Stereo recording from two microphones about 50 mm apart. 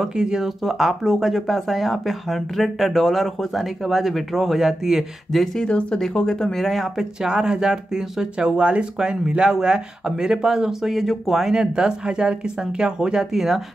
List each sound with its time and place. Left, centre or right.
0.0 s speech: centre
5.3 s speech: centre
5.7 s speech: left
6.5 s speech: centre